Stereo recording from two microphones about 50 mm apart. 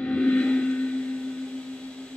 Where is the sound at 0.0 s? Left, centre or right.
Left.